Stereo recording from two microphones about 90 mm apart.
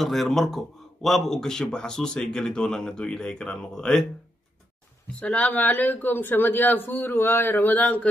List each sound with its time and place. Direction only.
0.0 s a man's voice: 5° left (ahead or behind)
5.2 s a man's voice: 15° left (ahead or behind)